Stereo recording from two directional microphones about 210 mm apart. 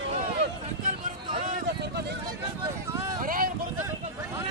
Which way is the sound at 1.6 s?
55° right (ahead or behind).